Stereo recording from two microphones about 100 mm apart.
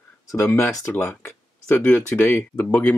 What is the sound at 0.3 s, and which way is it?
Speech, 30° left (ahead or behind).